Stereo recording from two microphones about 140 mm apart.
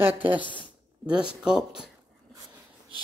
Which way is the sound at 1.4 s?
5° right (ahead or behind).